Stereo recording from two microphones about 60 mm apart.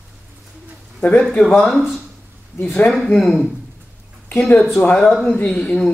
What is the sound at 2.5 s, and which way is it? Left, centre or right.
Speech, left.